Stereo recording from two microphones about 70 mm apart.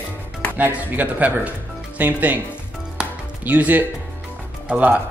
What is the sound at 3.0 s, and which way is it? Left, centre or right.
Music, right.